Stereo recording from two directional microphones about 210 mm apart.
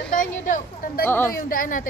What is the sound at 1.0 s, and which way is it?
Speech, 10° left (ahead or behind).